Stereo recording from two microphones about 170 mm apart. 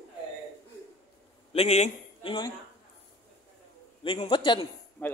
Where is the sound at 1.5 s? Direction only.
40° left (ahead or behind).